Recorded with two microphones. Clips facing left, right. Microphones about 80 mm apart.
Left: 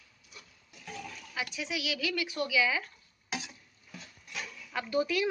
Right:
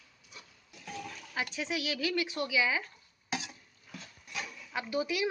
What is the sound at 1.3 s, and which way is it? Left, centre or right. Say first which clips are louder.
Speech: right 1 dB; right.